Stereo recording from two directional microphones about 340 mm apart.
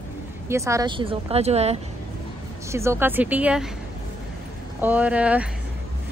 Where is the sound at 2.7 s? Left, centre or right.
Centre.